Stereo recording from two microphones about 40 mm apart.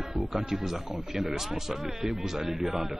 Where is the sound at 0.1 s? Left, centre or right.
Centre.